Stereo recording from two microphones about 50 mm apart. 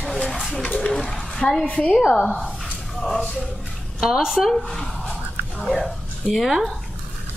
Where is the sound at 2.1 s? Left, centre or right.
Centre.